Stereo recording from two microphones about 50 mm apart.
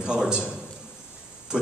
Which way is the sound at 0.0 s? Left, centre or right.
Centre.